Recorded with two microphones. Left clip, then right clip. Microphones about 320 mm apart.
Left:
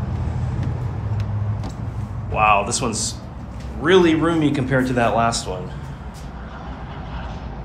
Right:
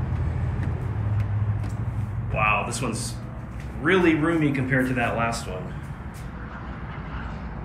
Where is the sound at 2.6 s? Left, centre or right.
Centre.